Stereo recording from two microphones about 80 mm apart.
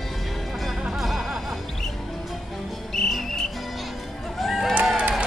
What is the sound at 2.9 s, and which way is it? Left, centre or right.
Music, centre.